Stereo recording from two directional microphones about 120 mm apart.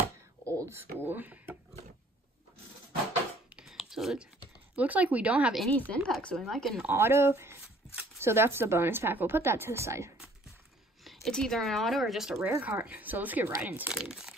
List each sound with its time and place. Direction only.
0.5 s speech: 25° right (ahead or behind)
3.5 s a sound: 5° right (ahead or behind)
4.7 s speech: 10° right (ahead or behind)
5.7 s speech: 10° left (ahead or behind)
6.9 s a woman's voice: 20° right (ahead or behind)
11.2 s speech: 5° left (ahead or behind)